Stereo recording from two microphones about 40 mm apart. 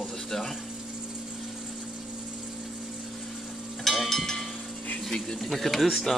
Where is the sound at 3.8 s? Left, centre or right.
Centre.